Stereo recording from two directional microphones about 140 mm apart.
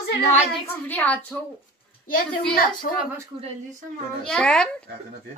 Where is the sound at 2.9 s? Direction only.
90° left.